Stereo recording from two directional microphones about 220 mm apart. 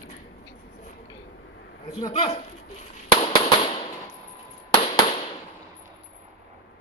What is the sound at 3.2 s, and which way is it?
Fireworks, 25° left (ahead or behind).